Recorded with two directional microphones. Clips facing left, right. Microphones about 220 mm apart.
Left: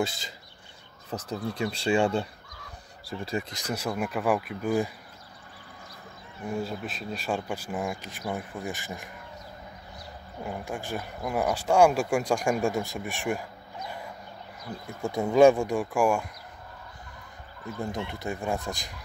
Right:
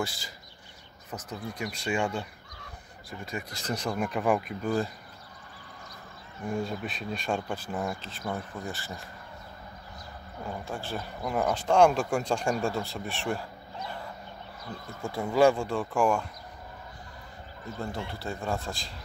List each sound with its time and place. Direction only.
0.0 s speech: 20° left (ahead or behind)
3.5 s speech: 10° left (ahead or behind)
6.5 s speech: centre (ahead or behind)
10.4 s speech: 15° left (ahead or behind)
14.9 s speech: 20° left (ahead or behind)
17.7 s speech: 20° left (ahead or behind)